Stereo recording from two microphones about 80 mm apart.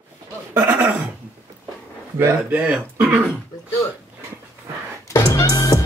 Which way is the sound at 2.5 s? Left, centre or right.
Centre.